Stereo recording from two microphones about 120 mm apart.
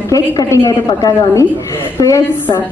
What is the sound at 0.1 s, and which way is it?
A woman's voice, 25° left (ahead or behind).